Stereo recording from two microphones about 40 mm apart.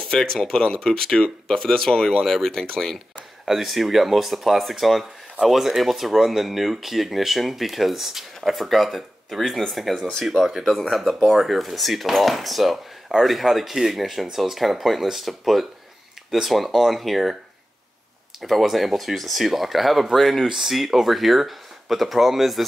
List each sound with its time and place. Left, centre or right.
0.0 s speech: centre
3.6 s speech: centre
18.4 s speech: centre